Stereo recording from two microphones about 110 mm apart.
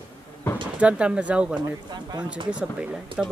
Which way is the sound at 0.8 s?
10° right (ahead or behind).